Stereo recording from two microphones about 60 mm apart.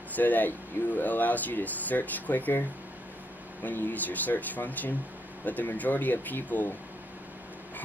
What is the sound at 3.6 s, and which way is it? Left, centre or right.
Speech, left.